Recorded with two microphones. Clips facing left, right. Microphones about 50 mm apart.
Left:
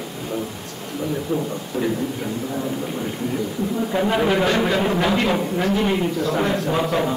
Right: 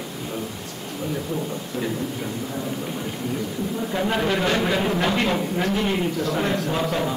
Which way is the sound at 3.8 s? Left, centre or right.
Centre.